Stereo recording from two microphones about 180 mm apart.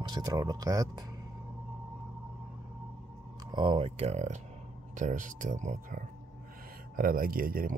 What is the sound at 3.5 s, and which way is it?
Speech, 25° right (ahead or behind).